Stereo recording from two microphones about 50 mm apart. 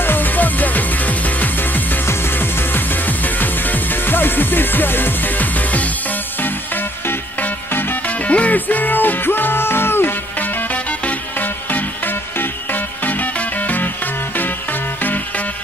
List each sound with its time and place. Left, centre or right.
0.0 s music: left
2.0 s music: left
8.1 s music: left
10.4 s music: left